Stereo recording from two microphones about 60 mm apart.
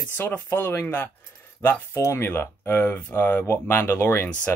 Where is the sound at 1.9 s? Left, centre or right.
Left.